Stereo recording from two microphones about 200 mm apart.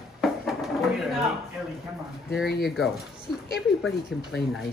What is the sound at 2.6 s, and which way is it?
A woman's voice, centre (ahead or behind).